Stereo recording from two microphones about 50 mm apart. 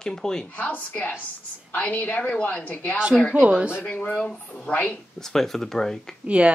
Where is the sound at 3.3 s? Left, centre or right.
Right.